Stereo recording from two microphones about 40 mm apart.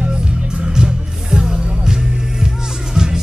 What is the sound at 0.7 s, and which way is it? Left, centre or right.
Music, centre.